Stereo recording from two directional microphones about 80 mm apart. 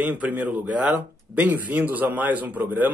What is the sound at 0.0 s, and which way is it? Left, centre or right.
Speech, right.